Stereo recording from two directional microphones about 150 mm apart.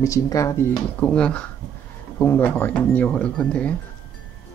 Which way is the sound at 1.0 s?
5° left (ahead or behind).